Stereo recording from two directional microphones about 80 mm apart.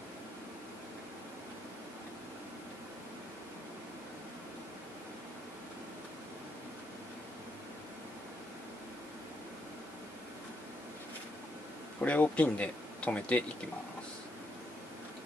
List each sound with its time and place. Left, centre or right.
12.0 s speech: centre